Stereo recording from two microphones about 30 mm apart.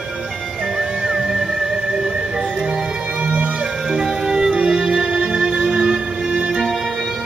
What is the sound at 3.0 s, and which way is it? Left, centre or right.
Music, right.